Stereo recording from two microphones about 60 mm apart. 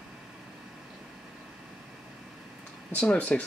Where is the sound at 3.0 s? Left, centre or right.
Left.